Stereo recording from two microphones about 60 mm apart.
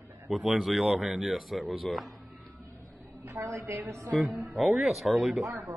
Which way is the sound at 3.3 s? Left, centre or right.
Right.